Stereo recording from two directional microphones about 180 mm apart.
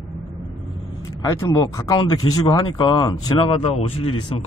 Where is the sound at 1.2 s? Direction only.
20° left (ahead or behind).